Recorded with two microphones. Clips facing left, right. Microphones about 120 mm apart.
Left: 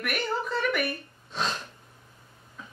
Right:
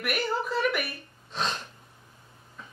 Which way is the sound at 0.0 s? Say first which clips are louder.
Right 1 dB; 5° right (ahead or behind).